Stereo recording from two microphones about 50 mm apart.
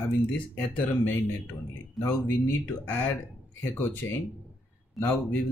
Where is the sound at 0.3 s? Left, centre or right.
Left.